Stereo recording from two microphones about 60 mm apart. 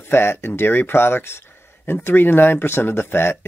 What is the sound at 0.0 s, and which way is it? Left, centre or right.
Speech, left.